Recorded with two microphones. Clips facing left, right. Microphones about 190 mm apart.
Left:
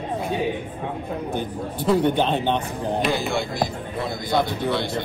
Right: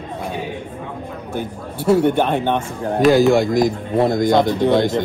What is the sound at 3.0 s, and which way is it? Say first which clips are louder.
Speech: right 17 dB; 90° right.